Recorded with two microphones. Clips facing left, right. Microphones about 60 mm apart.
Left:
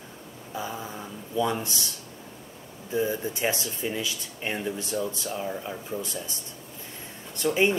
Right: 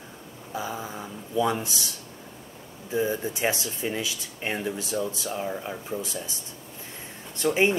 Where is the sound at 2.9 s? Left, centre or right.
Centre.